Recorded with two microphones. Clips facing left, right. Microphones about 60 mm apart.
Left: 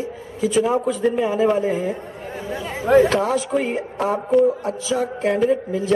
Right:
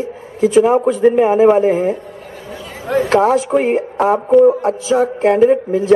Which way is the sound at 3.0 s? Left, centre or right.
Right.